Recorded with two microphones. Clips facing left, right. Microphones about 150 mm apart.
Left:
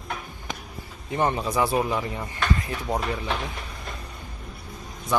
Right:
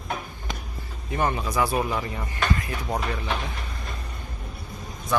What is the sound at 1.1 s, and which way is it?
Speech, 25° left (ahead or behind).